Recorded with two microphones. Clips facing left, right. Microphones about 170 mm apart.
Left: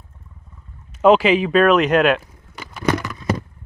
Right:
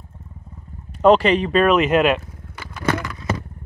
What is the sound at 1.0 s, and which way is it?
Speech, centre (ahead or behind).